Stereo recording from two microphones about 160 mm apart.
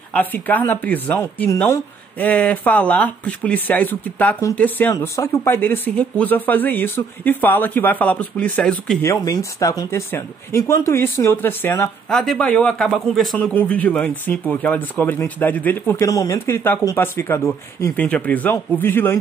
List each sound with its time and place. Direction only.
0.1 s speech: 10° left (ahead or behind)
9.0 s speech: 20° left (ahead or behind)
12.1 s speech: centre (ahead or behind)